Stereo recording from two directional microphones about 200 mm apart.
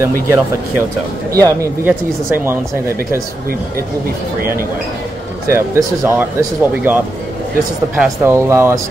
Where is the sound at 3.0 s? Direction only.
50° right (ahead or behind).